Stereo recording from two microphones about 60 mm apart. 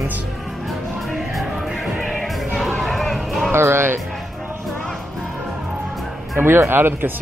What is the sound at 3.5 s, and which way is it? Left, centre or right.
Speech, right.